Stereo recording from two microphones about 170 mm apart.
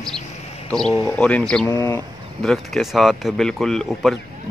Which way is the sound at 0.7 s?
5° left (ahead or behind).